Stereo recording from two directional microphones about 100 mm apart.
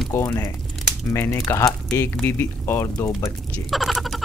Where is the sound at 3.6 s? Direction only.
Centre (ahead or behind).